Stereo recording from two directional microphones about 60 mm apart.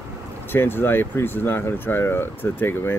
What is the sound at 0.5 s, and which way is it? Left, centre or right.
Speech, left.